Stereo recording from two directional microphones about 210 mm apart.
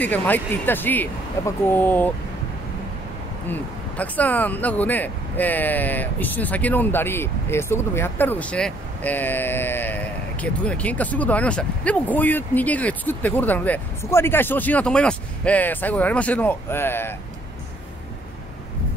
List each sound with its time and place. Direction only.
0.0 s speech: 10° left (ahead or behind)
3.4 s speech: 5° left (ahead or behind)